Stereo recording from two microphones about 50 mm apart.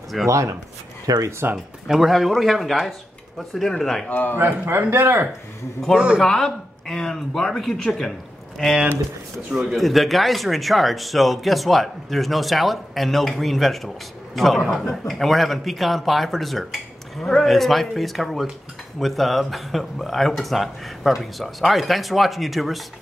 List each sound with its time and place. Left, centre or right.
0.3 s speech: right
1.4 s speech: right
1.9 s speech: centre
4.1 s a man's voice: left
4.6 s speech: right
5.9 s speech: centre
6.2 s speech: centre